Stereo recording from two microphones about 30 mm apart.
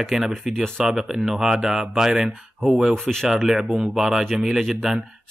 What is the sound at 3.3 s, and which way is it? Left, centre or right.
Speech, centre.